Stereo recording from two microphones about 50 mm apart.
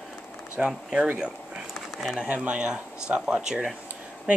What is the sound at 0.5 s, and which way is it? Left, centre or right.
Speech, right.